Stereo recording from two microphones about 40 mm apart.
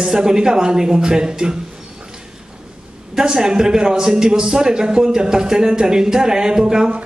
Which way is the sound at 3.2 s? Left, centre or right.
Centre.